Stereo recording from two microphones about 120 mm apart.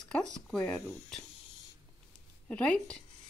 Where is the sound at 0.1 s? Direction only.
5° left (ahead or behind).